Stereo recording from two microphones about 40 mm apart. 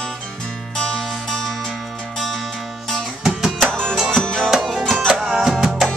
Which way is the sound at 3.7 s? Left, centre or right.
Centre.